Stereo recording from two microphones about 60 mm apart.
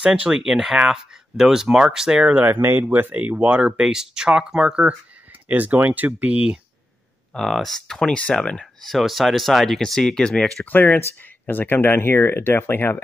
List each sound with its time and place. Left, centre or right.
0.0 s speech: centre
2.3 s speech: right; by 4.9 s centre
5.5 s speech: right
7.3 s speech: centre
8.8 s speech: centre
10.6 s speech: left